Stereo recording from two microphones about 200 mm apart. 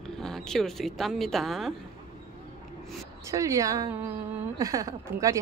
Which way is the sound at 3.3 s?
15° right (ahead or behind).